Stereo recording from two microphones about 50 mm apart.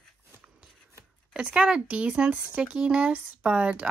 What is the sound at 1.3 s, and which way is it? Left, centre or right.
Speech, right.